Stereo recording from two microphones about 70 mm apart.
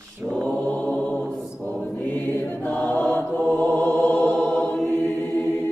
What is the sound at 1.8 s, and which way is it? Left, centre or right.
Music, centre.